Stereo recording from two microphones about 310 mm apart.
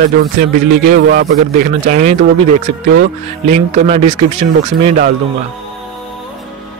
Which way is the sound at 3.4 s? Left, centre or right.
Right.